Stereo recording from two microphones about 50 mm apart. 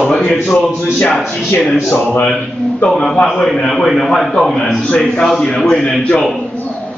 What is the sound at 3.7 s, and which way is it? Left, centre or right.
A man's voice, centre.